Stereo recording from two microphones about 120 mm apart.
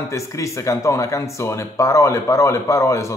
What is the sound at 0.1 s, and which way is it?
Speech, 25° left (ahead or behind).